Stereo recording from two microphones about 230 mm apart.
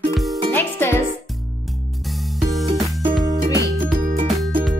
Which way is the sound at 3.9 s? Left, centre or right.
Right.